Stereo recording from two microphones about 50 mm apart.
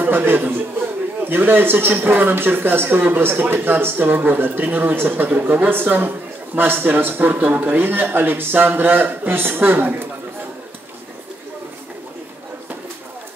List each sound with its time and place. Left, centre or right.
0.0 s a man's voice: right
7.7 s a man's voice: right